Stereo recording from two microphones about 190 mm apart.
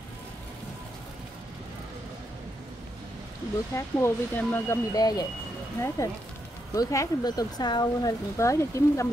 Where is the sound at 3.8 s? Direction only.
15° left (ahead or behind).